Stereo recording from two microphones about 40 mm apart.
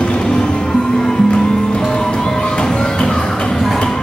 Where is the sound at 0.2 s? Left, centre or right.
Centre.